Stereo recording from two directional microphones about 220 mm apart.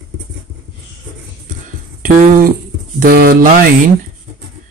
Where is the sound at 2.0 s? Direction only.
40° right (ahead or behind).